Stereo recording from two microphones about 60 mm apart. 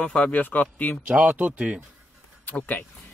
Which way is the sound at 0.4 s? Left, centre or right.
Left.